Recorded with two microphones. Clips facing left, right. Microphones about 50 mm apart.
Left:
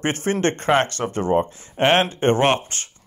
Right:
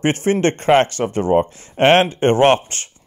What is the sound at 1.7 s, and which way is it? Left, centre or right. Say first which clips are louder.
Speech: right 5 dB; right.